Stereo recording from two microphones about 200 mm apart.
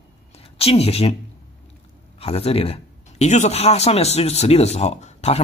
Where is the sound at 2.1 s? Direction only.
30° left (ahead or behind).